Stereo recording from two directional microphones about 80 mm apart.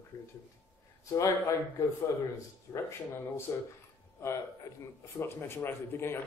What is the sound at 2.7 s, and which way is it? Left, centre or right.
Speech, left.